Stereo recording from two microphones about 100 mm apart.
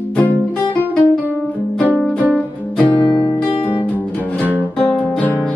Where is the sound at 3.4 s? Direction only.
15° left (ahead or behind).